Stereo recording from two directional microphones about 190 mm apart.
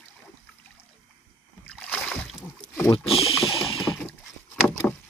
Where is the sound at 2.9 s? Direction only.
30° left (ahead or behind).